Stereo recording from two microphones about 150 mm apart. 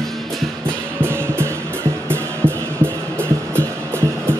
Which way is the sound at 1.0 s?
15° right (ahead or behind).